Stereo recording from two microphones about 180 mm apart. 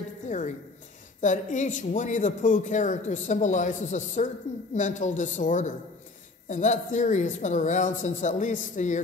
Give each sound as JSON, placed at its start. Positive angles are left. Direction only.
{"t": 1.2, "sound": "a man's voice", "side_deg": 45}